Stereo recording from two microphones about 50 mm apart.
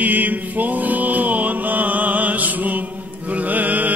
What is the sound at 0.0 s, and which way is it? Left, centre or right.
Mantra, right.